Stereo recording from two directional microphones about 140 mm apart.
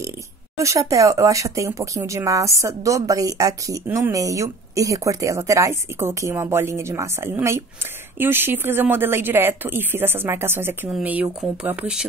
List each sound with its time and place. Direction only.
0.6 s speech: 20° right (ahead or behind); by 12.1 s 5° right (ahead or behind)